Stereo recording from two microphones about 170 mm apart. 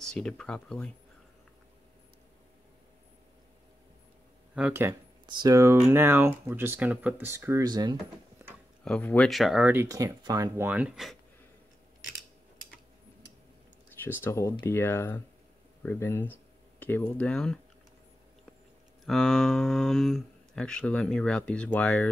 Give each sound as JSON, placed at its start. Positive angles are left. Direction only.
{"t": 0.0, "sound": "speech", "side_deg": 5}
{"t": 4.6, "sound": "speech", "side_deg": -10}
{"t": 5.2, "sound": "speech", "side_deg": -25}
{"t": 8.8, "sound": "speech", "side_deg": 5}
{"t": 14.0, "sound": "speech", "side_deg": 15}
{"t": 19.0, "sound": "speech", "side_deg": 0}